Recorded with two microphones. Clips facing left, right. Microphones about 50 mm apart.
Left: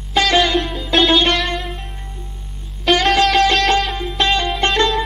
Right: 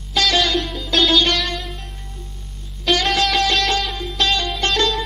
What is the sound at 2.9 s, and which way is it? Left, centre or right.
Music, centre.